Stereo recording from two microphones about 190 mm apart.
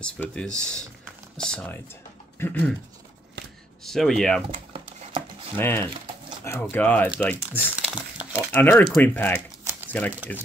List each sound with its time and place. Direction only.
0.0 s speech: 5° left (ahead or behind)
3.8 s speech: centre (ahead or behind)
4.7 s a sound: 30° right (ahead or behind)
5.6 s speech: 10° left (ahead or behind)
7.9 s crumpling: 5° right (ahead or behind)
8.5 s speech: 10° left (ahead or behind)